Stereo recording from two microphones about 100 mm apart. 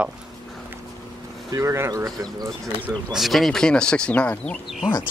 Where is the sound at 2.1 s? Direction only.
40° right (ahead or behind).